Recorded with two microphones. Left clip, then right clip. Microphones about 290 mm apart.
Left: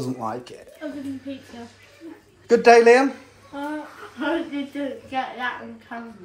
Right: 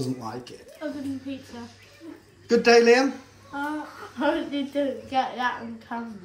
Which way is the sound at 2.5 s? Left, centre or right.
Centre.